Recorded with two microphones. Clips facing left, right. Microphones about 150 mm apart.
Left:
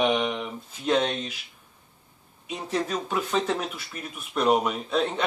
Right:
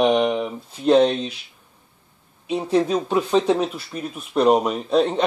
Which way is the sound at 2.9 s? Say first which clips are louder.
Right 7 dB; 35° right (ahead or behind).